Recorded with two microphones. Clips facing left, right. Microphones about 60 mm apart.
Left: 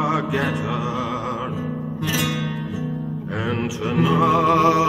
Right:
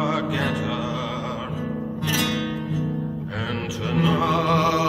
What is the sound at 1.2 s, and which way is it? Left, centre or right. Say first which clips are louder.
Music: left 3 dB; centre.